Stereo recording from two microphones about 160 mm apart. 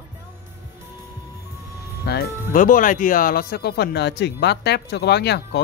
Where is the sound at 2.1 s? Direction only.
90° left.